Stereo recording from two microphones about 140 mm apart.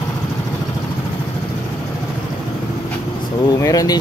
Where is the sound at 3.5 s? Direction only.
25° left (ahead or behind).